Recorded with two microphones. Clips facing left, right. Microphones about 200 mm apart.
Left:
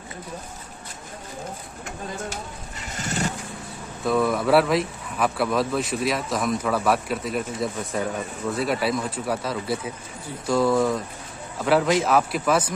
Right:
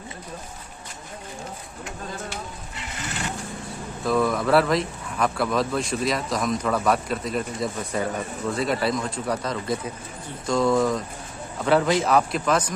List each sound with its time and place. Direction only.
3.0 s vehicle: 40° left (ahead or behind)
4.0 s speech: centre (ahead or behind)